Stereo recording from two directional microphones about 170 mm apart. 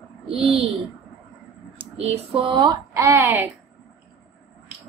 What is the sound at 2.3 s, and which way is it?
Speech, 30° right (ahead or behind).